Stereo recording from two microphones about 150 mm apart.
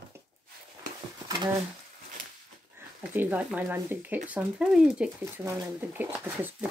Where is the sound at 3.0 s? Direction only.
10° right (ahead or behind).